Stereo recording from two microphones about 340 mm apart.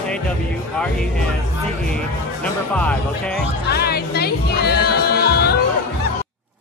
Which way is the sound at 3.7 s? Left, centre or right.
Left.